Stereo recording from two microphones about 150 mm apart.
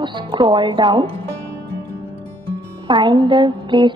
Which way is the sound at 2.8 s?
30° right (ahead or behind).